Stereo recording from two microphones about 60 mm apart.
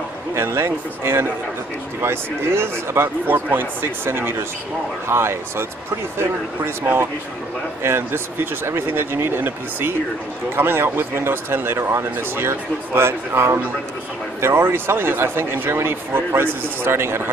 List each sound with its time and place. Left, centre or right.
0.3 s speech: right